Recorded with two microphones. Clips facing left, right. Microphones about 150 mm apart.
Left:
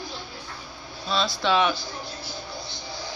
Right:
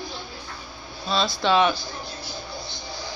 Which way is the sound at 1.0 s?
35° right (ahead or behind).